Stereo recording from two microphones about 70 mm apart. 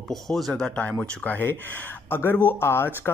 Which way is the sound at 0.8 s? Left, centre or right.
Left.